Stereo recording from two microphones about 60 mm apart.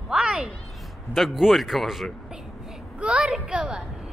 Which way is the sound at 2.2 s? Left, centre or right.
Centre.